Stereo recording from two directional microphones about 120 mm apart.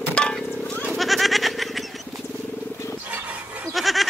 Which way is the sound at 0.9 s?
Centre (ahead or behind).